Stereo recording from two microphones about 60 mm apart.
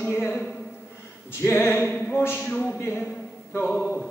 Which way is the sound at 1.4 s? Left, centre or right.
Left.